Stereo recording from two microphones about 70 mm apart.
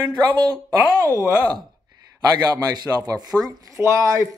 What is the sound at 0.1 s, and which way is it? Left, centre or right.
Speech, right.